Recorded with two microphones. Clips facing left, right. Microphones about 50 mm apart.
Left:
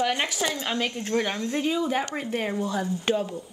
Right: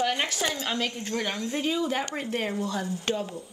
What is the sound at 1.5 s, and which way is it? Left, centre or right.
Speech, centre.